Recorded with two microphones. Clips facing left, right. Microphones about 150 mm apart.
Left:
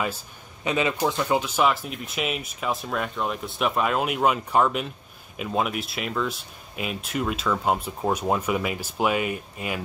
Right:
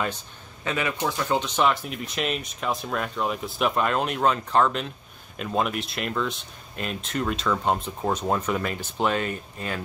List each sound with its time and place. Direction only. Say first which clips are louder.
0.7 s a man's voice: left 3 dB; 20° left (ahead or behind)